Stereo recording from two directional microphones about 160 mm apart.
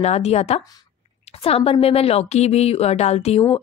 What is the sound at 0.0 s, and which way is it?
A woman's voice, 40° left (ahead or behind).